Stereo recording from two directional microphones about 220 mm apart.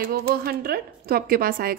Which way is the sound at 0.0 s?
45° right (ahead or behind).